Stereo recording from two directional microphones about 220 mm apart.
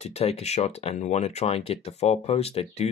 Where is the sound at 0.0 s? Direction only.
25° left (ahead or behind).